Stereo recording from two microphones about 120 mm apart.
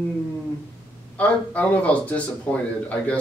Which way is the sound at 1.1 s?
10° left (ahead or behind).